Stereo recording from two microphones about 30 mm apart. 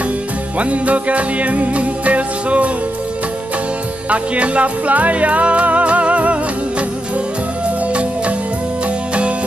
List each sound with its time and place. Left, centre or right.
0.6 s music: right
4.1 s speech: right
7.9 s music: right